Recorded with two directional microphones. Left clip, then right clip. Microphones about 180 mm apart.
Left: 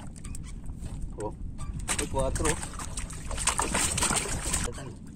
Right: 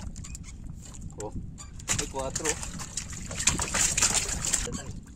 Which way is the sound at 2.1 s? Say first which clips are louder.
Left 3 dB; 5° right (ahead or behind).